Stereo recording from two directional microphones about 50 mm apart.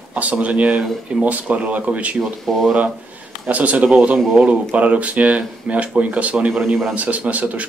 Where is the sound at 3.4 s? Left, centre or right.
Right.